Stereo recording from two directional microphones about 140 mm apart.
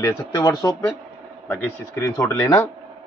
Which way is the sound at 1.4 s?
15° left (ahead or behind).